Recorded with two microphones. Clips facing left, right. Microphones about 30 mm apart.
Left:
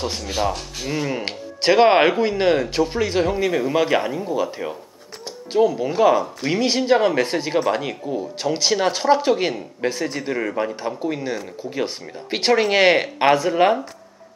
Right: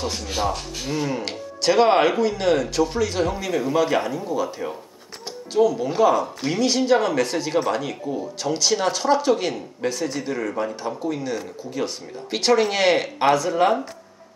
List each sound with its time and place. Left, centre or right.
0.2 s speech: centre
1.2 s speech: left
6.4 s speech: centre
6.9 s speech: left